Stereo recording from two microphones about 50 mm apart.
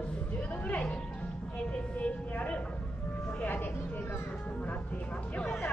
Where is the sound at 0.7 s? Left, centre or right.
Left.